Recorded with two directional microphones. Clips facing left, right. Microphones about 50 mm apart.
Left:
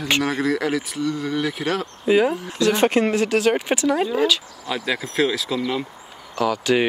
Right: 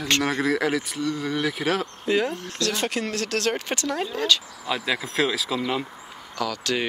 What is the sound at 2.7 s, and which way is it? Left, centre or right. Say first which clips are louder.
Speech: left 9 dB; left.